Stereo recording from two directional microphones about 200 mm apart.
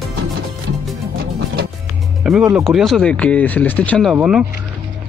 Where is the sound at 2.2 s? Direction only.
5° right (ahead or behind).